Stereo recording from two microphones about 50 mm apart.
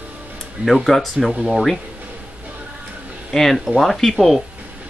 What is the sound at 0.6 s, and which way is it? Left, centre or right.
Speech, right.